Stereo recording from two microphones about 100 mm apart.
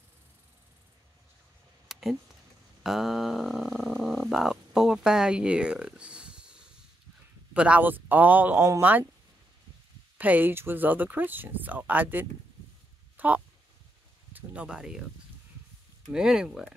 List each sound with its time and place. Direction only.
1.9 s a sound: 5° right (ahead or behind)
2.8 s a man's voice: 5° right (ahead or behind)
10.1 s speech: 15° right (ahead or behind)
13.2 s a sound: 15° right (ahead or behind)
14.3 s speech: 15° right (ahead or behind)
16.1 s a man's voice: 5° right (ahead or behind)